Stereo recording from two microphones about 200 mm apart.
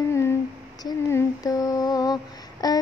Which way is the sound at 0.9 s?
15° left (ahead or behind).